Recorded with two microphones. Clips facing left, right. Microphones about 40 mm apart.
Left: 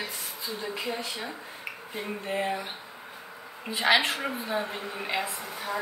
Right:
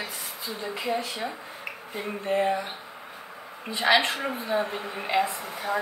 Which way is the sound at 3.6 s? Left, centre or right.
Centre.